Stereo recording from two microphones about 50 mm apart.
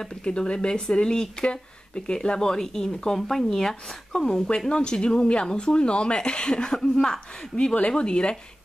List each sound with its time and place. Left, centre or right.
0.0 s speech: centre